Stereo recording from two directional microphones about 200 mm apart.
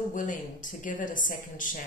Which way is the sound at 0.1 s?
40° left (ahead or behind).